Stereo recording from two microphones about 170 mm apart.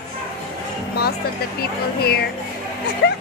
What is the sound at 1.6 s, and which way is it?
Speech, 65° left (ahead or behind).